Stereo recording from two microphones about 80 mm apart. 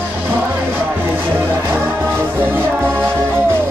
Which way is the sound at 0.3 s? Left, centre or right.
Right.